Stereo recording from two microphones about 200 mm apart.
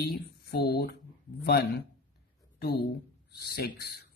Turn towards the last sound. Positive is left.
turn(degrees=50)  # may be behind; listen again after turning